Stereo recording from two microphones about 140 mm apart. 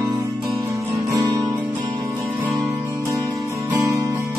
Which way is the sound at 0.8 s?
20° right (ahead or behind).